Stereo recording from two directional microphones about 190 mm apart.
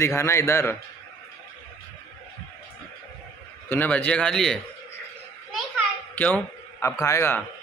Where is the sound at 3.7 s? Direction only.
10° left (ahead or behind).